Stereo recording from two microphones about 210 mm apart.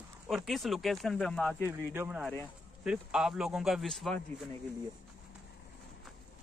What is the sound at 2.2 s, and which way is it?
Speech, 10° left (ahead or behind).